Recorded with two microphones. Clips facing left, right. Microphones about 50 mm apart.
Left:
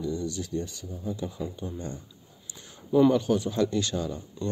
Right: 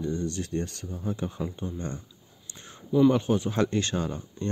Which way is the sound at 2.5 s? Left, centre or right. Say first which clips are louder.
Right 2 dB; right.